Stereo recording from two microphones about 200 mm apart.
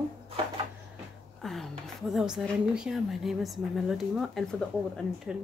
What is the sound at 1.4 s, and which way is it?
A woman's voice, centre (ahead or behind).